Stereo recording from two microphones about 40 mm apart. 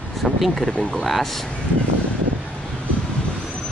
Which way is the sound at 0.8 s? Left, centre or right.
Left.